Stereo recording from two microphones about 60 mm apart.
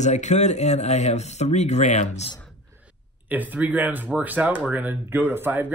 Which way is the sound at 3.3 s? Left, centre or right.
Right.